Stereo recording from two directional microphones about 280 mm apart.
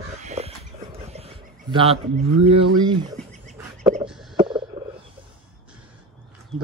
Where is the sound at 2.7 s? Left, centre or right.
Right.